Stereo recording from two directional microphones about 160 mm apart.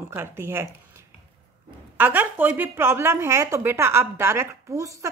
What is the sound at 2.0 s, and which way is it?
A woman's voice, 10° right (ahead or behind).